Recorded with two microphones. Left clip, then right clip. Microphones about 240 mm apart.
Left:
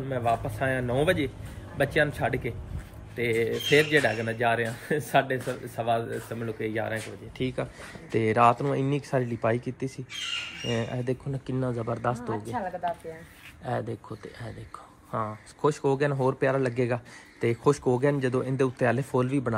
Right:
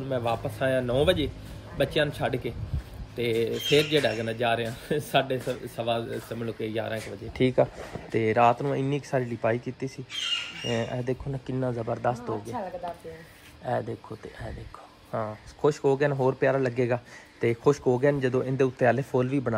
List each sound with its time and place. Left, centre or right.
0.1 s speech: centre
7.4 s speech: right
8.1 s speech: centre
13.7 s speech: centre
15.0 s speech: centre